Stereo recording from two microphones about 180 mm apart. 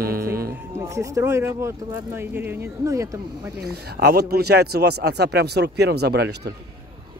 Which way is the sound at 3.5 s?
60° right (ahead or behind).